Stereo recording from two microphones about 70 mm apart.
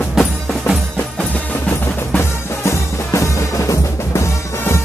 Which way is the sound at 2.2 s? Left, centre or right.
Left.